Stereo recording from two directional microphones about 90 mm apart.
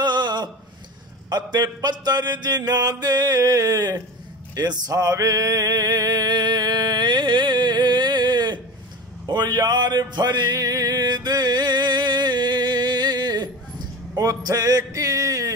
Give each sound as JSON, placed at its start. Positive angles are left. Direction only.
{"t": 0.0, "sound": "a sound", "side_deg": -55}
{"t": 1.3, "sound": "mantra", "side_deg": -50}
{"t": 4.6, "sound": "male singing", "side_deg": -45}
{"t": 9.2, "sound": "music", "side_deg": -50}